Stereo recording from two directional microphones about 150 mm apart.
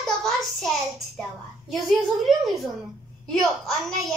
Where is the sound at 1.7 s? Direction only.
Centre (ahead or behind).